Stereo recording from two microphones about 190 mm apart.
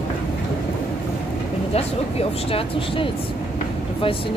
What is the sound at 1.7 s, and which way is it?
Speech, 30° left (ahead or behind).